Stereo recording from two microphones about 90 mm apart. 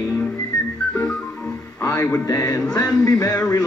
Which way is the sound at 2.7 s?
45° left (ahead or behind).